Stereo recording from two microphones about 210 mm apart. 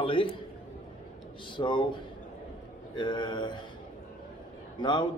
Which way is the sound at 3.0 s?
20° left (ahead or behind).